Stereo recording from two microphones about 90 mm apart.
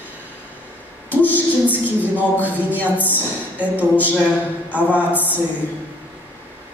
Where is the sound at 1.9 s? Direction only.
20° left (ahead or behind).